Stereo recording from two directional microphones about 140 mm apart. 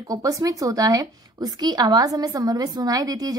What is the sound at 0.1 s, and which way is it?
A woman's voice, 25° right (ahead or behind).